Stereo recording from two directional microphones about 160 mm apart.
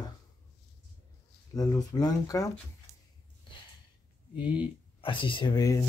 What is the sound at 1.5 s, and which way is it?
Speech, 25° left (ahead or behind).